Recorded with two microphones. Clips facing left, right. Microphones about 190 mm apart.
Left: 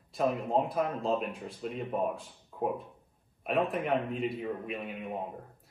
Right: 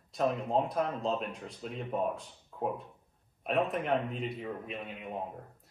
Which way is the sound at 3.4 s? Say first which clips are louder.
Left 1 dB; centre (ahead or behind).